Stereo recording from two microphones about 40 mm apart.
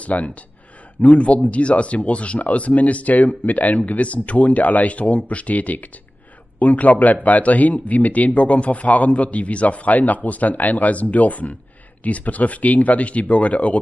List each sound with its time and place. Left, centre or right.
0.0 s speech: left